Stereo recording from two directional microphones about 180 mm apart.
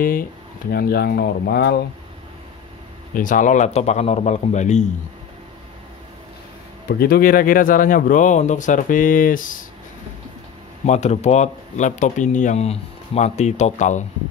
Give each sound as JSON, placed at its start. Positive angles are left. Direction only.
{"t": 0.0, "sound": "speech", "side_deg": 50}
{"t": 3.2, "sound": "speech", "side_deg": 45}
{"t": 6.9, "sound": "speech", "side_deg": 60}
{"t": 10.9, "sound": "speech", "side_deg": 40}